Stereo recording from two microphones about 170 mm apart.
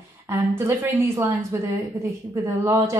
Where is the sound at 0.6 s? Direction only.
15° right (ahead or behind).